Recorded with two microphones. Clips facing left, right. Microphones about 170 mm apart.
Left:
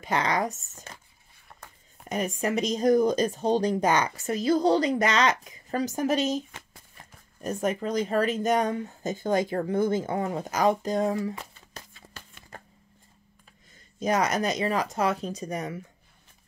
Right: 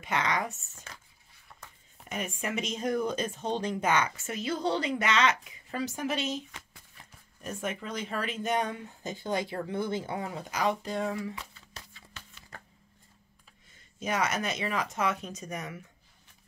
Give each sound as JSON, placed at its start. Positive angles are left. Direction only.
{"t": 0.0, "sound": "speech", "side_deg": 35}
{"t": 1.5, "sound": "a sound", "side_deg": 55}
{"t": 2.0, "sound": "speech", "side_deg": 40}
{"t": 13.9, "sound": "speech", "side_deg": 35}